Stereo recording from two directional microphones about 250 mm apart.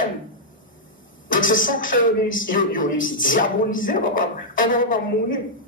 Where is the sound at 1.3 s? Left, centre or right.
Left.